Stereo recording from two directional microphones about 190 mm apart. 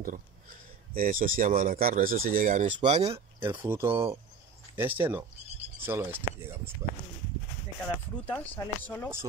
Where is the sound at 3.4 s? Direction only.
10° right (ahead or behind).